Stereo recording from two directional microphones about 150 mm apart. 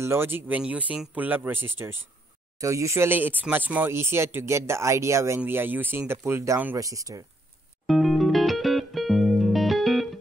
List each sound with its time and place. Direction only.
0.0 s speech: 15° right (ahead or behind)
7.8 s music: centre (ahead or behind)